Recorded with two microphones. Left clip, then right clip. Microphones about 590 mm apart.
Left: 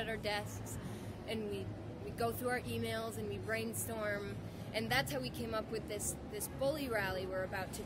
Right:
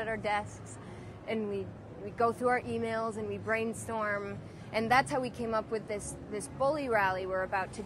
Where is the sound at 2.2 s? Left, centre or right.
Right.